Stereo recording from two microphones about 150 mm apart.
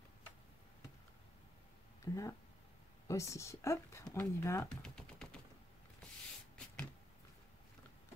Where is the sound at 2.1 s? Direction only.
20° left (ahead or behind).